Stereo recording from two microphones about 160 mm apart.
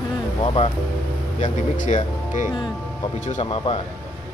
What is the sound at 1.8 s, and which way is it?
Speech, 50° left (ahead or behind).